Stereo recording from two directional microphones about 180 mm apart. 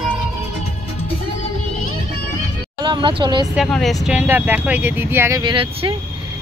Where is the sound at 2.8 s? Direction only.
25° right (ahead or behind).